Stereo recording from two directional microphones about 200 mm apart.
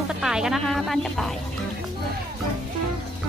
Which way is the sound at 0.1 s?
5° right (ahead or behind).